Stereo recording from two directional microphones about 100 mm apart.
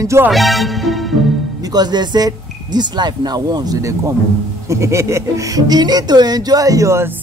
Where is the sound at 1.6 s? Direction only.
45° right (ahead or behind).